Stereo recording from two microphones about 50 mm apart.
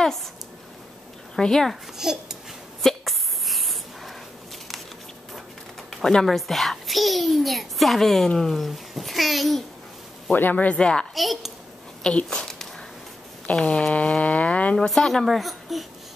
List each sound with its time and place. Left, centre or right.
1.3 s speech: centre
1.7 s a child's voice: centre
2.8 s hiccup: centre
5.9 s a sound: centre
6.2 s a child's voice: centre
10.3 s speech: left
10.8 s a child's voice: centre
11.1 s a child's voice: centre
12.3 s a sound: centre
13.5 s speech: left
14.9 s speech: centre
15.2 s speech: centre